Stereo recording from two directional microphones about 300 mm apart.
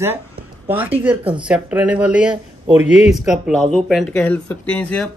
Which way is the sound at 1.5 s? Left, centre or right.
Centre.